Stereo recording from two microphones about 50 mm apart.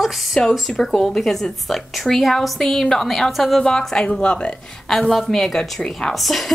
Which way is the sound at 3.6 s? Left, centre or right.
Centre.